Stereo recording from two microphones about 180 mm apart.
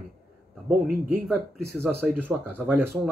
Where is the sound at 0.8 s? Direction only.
50° right (ahead or behind).